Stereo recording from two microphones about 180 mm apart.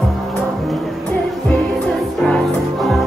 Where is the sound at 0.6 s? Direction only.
Centre (ahead or behind).